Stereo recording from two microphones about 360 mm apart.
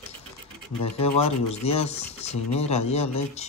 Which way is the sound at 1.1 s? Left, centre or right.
Centre.